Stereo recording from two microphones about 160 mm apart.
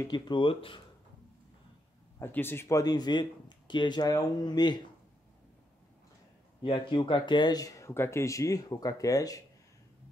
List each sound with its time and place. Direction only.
0.0 s speech: 25° left (ahead or behind)
2.1 s speech: 15° left (ahead or behind)
6.6 s speech: 30° left (ahead or behind)